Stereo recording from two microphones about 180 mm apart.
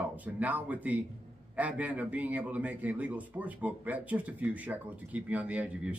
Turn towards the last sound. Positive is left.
turn(degrees=-5)  # may be behind; listen again after turning